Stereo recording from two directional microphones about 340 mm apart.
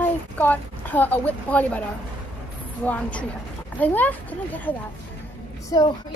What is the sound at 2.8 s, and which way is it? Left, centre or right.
Speech, centre.